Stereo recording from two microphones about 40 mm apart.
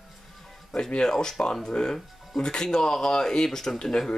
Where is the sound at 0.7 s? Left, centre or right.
Centre.